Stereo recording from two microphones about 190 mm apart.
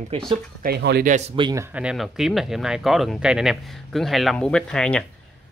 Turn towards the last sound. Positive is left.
turn(degrees=5)  # may be behind; listen again after turning